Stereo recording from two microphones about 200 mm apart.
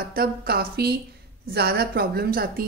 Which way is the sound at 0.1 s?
50° right (ahead or behind).